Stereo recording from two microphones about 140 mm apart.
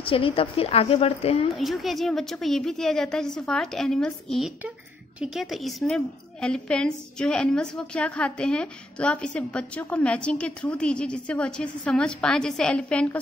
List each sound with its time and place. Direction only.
0.0 s a woman's voice: 40° left (ahead or behind)
1.5 s a woman's voice: centre (ahead or behind)